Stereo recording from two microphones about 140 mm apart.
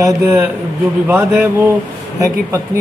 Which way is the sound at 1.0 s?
15° right (ahead or behind).